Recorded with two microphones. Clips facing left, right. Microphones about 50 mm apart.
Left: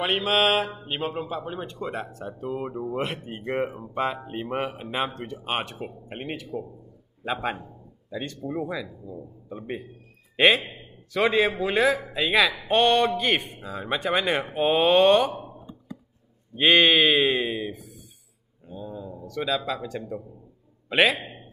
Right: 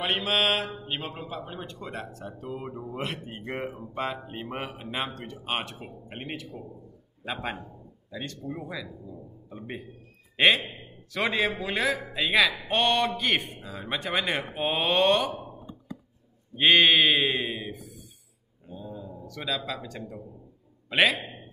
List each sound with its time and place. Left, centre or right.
0.0 s a man's voice: centre
16.5 s a man's voice: centre
18.7 s a sound: centre
20.9 s a man's voice: centre